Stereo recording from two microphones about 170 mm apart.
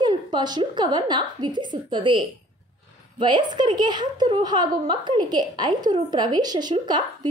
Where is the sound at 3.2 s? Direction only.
25° right (ahead or behind).